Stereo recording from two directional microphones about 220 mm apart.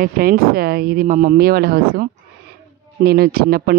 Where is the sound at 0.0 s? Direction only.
40° right (ahead or behind).